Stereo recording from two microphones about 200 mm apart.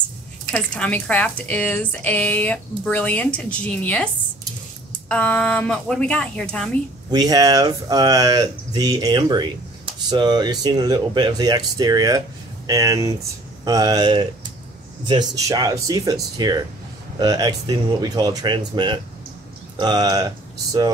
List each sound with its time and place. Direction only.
0.5 s speech: 5° left (ahead or behind)
7.1 s speech: 20° right (ahead or behind)